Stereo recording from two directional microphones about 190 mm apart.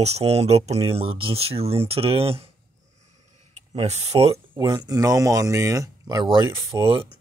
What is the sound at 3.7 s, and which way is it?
Speech, 35° right (ahead or behind).